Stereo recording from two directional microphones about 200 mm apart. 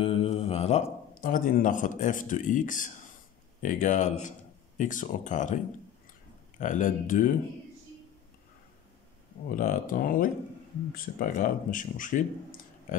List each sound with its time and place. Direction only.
0.0 s speech: 30° left (ahead or behind)
6.6 s speech: 40° left (ahead or behind)
9.6 s speech: 45° left (ahead or behind)